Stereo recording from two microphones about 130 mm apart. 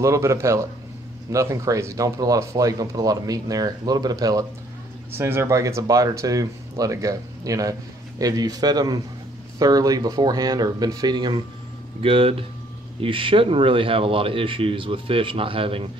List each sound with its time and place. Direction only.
0.0 s speech: 25° right (ahead or behind)
5.1 s speech: 20° right (ahead or behind); by 15.9 s 45° right (ahead or behind)